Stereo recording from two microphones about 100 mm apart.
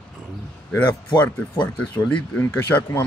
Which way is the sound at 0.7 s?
15° left (ahead or behind).